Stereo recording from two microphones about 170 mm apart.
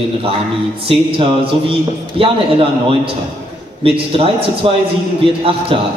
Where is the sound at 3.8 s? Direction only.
35° right (ahead or behind).